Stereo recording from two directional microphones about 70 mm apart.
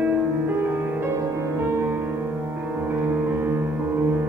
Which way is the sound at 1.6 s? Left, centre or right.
Right.